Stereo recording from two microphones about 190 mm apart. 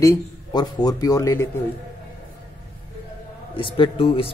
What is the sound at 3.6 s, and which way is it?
Speech, 25° left (ahead or behind).